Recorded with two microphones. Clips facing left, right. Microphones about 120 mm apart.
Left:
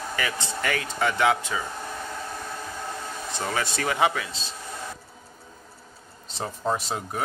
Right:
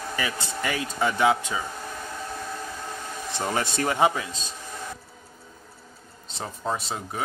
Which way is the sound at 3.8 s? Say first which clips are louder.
Right 2 dB; 30° right (ahead or behind).